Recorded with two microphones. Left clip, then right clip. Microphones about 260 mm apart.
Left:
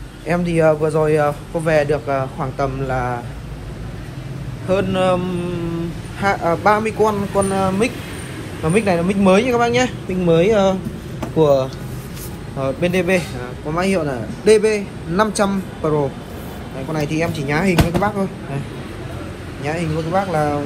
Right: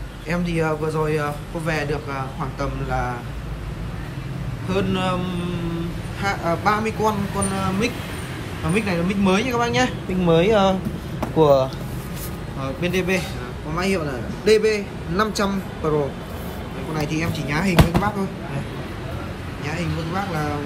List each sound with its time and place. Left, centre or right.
0.3 s speech: centre
4.6 s speech: centre
6.2 s speech: centre
12.6 s a man's voice: centre
16.9 s speech: centre